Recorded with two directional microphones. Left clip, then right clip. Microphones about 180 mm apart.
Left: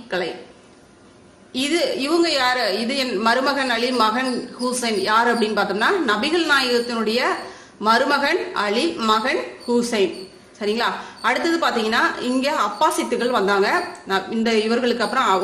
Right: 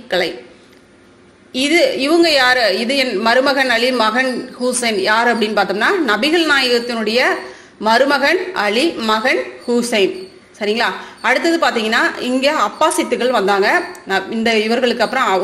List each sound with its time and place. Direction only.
1.5 s a woman's voice: 20° right (ahead or behind)